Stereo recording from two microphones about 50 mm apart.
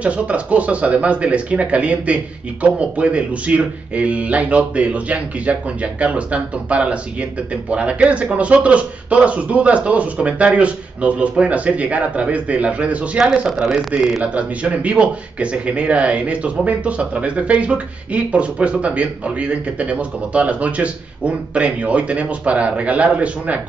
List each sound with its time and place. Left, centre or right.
0.0 s speech: right
14.2 s speech: right